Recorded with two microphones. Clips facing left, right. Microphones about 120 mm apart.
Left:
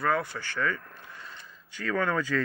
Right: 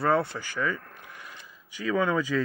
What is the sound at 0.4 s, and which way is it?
Speech, 15° right (ahead or behind).